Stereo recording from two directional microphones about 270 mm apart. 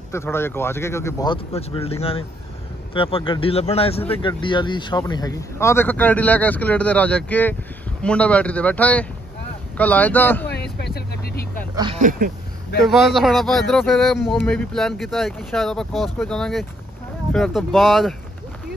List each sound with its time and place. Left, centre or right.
0.1 s speech: centre
10.5 s vehicle: left
11.7 s a sound: centre
12.0 s speech: right
12.8 s speech: centre